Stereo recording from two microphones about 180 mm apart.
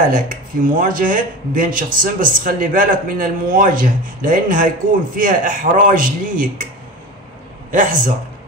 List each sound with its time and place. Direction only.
0.1 s speech: 50° right (ahead or behind)
7.7 s speech: 50° right (ahead or behind)